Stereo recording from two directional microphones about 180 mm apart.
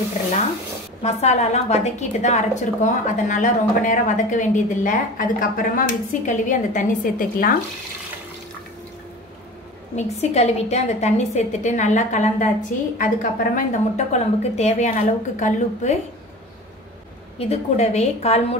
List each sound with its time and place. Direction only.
1.0 s a woman's voice: 35° left (ahead or behind)
9.9 s a woman's voice: 35° left (ahead or behind)
17.4 s a woman's voice: 35° left (ahead or behind)